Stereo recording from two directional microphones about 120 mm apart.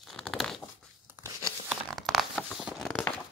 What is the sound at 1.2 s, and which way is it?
Crumpling, 15° right (ahead or behind).